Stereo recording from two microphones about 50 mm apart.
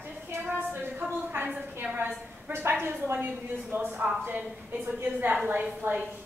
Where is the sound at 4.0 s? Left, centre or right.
Right.